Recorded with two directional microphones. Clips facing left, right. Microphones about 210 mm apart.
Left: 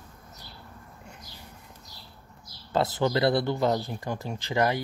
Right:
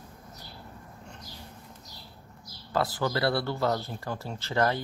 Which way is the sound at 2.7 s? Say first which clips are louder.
Left 3 dB; 25° left (ahead or behind).